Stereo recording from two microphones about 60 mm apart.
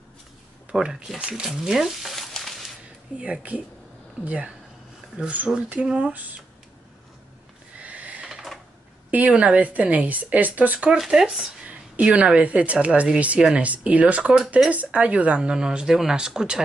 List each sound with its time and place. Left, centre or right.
0.7 s speech: centre
2.3 s a sound: centre
3.2 s a woman's voice: right
5.7 s a woman's voice: right
7.7 s a sound: right
8.3 s sewing machine: centre
9.1 s a woman's voice: right
11.0 s speech: centre
11.6 s a woman's voice: right